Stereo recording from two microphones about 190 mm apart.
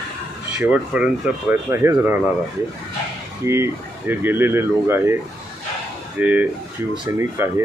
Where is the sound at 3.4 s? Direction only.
15° right (ahead or behind).